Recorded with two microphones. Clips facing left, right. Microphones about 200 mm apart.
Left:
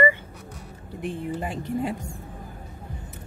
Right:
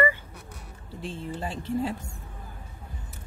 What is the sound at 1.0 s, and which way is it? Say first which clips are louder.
Speech: left 4 dB; 15° left (ahead or behind).